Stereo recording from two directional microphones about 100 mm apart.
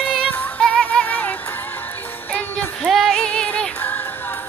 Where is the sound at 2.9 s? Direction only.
Centre (ahead or behind).